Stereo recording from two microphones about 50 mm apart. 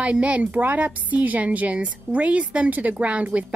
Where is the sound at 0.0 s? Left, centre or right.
Right.